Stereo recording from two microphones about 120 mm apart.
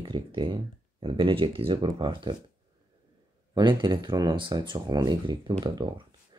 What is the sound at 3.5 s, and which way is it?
Speech, 40° right (ahead or behind).